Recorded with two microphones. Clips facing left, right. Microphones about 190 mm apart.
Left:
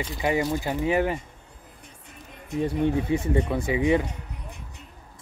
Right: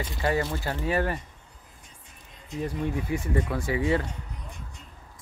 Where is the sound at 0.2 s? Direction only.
15° left (ahead or behind).